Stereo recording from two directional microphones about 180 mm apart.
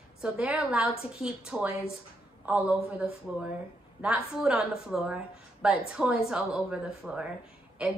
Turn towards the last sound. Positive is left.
turn(degrees=-5)  # may be behind; listen again after turning